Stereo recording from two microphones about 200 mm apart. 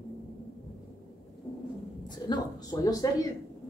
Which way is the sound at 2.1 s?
20° left (ahead or behind).